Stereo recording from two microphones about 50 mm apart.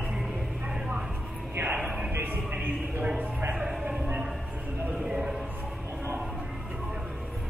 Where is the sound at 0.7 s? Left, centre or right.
Centre.